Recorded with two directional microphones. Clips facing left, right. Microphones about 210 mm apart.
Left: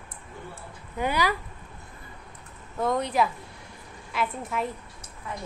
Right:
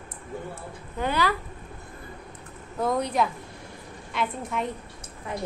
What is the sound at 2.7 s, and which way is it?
Speech, centre (ahead or behind).